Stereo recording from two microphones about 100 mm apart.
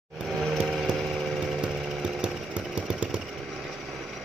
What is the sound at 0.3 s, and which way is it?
Chainsaw, centre (ahead or behind).